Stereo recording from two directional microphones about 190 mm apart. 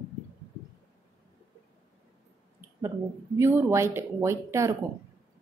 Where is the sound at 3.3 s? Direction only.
15° right (ahead or behind).